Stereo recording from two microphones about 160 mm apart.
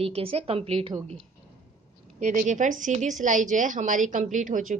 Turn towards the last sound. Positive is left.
turn(degrees=-55)  # may be behind; listen again after turning